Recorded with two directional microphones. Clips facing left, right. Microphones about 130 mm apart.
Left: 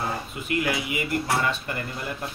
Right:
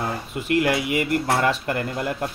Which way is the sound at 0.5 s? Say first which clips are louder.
Right 6 dB; 70° right (ahead or behind).